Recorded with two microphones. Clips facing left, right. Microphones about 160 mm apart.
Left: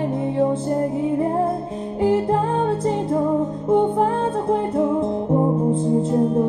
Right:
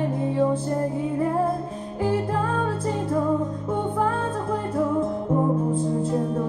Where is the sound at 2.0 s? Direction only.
25° left (ahead or behind).